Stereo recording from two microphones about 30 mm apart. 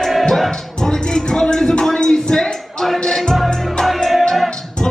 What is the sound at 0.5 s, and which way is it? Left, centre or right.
Music, left.